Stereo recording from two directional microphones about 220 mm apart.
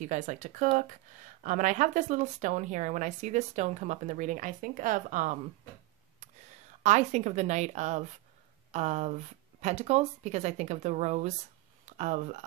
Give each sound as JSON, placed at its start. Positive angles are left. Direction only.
{"t": 0.0, "sound": "speech", "side_deg": -35}
{"t": 6.8, "sound": "speech", "side_deg": -35}